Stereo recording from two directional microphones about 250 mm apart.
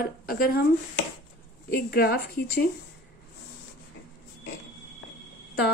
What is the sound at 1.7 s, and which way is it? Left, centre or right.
Speech, left.